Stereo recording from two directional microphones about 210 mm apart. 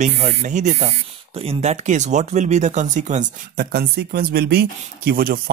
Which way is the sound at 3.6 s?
50° right (ahead or behind).